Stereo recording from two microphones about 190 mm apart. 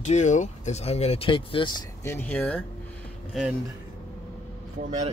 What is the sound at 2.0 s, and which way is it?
Speech, 10° left (ahead or behind).